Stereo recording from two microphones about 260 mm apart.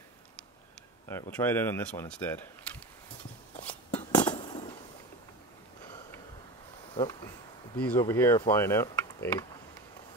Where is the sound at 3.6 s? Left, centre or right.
Centre.